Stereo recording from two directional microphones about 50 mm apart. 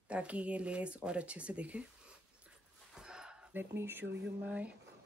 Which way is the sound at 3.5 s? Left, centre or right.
Right.